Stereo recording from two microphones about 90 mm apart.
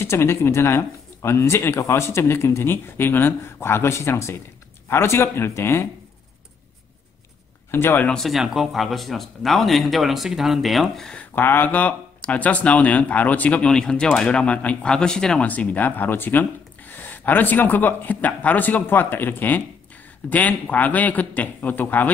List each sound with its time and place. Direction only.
0.0 s speech: 25° left (ahead or behind)
7.7 s speech: 25° left (ahead or behind)
8.1 s speech: centre (ahead or behind)
11.1 s speech: 20° left (ahead or behind)